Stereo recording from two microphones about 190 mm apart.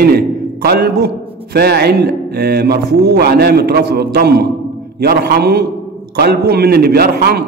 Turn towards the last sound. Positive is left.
turn(degrees=-55)  # may be behind; listen again after turning